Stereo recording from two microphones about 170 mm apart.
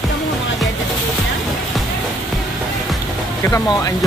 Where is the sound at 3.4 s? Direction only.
15° left (ahead or behind).